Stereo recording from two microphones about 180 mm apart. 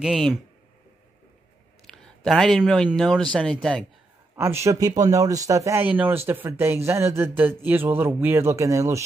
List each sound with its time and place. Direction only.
0.0 s speech: 5° right (ahead or behind)
1.9 s speech: centre (ahead or behind)
4.4 s speech: 15° right (ahead or behind)